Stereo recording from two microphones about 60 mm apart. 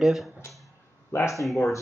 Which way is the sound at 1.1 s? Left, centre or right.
Left.